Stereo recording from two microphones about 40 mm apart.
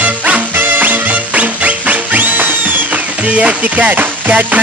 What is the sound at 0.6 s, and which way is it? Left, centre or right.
Music, right.